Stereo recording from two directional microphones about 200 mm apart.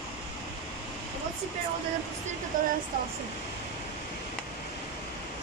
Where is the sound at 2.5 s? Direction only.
40° right (ahead or behind).